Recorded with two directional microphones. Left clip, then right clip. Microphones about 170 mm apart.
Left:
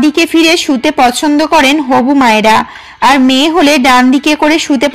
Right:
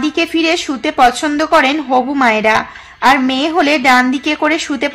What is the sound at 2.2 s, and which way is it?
A woman's voice, 30° left (ahead or behind).